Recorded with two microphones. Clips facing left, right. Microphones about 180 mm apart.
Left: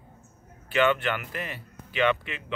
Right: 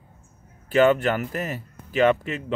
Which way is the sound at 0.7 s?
40° right (ahead or behind).